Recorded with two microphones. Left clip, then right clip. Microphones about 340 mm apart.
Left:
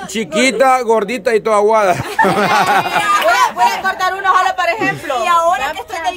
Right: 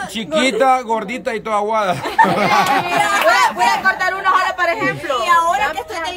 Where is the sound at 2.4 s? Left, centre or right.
Centre.